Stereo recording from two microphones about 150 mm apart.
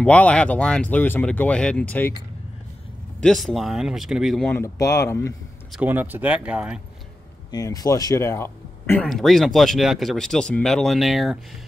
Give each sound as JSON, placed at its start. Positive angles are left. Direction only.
{"t": 0.0, "sound": "speech", "side_deg": 10}
{"t": 3.2, "sound": "speech", "side_deg": 5}
{"t": 4.6, "sound": "speech", "side_deg": 20}
{"t": 5.7, "sound": "speech", "side_deg": -10}
{"t": 7.5, "sound": "speech", "side_deg": 25}
{"t": 9.0, "sound": "speech", "side_deg": 0}